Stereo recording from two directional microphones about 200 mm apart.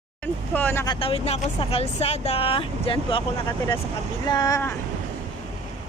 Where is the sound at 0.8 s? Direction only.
25° left (ahead or behind).